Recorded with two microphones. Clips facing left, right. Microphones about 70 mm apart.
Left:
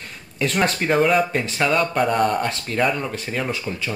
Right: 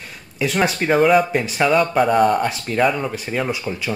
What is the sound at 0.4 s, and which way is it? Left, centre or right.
Speech, centre.